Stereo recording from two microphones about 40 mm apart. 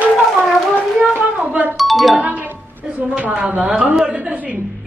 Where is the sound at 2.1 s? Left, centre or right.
Right.